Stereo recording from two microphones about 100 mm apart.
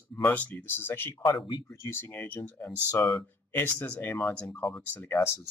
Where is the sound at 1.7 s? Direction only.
25° left (ahead or behind).